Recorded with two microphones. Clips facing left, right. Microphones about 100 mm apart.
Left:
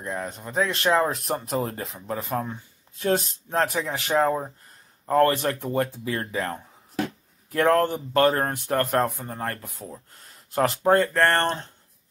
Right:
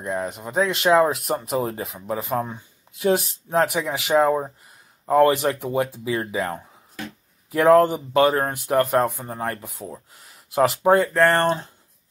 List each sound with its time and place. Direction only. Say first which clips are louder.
0.0 s speech: right 4 dB; 15° right (ahead or behind)